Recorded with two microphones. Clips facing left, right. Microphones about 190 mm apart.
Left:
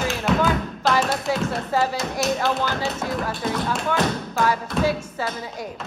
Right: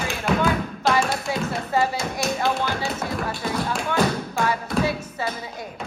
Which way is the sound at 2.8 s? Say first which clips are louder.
Left 1 dB; centre (ahead or behind).